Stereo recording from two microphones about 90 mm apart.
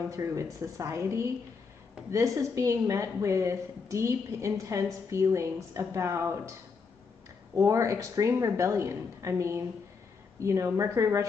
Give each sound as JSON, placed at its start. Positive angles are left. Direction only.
{"t": 0.1, "sound": "a woman's voice", "side_deg": -35}
{"t": 7.5, "sound": "a woman's voice", "side_deg": -35}